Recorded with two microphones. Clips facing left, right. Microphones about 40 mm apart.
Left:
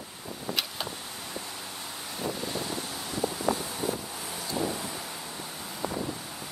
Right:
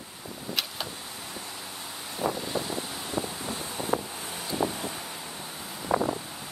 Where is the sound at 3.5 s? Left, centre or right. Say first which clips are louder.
Right 2 dB; right.